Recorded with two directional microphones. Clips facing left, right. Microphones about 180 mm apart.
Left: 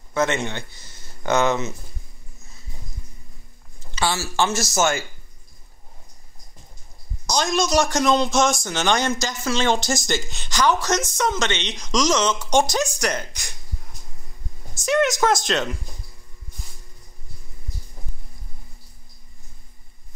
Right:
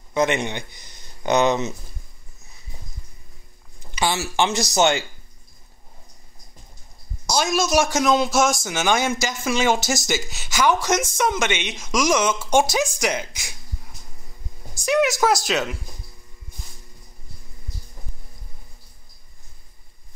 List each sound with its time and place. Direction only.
0.1 s speech: 15° right (ahead or behind)
3.9 s speech: 15° right (ahead or behind)
7.2 s speech: 5° right (ahead or behind)